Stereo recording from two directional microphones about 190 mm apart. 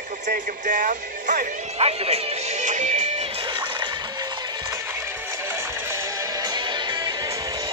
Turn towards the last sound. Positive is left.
turn(degrees=-20)  # may be behind; listen again after turning